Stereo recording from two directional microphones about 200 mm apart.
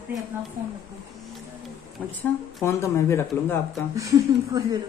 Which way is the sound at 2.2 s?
10° left (ahead or behind).